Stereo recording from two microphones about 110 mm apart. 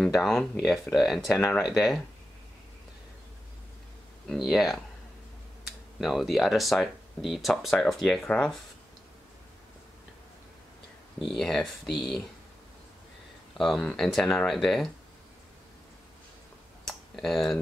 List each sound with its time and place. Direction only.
0.0 s speech: centre (ahead or behind)
4.3 s speech: centre (ahead or behind)
5.9 s speech: centre (ahead or behind)
11.2 s speech: 5° left (ahead or behind)
13.6 s speech: centre (ahead or behind)
16.8 s tick-tock: centre (ahead or behind)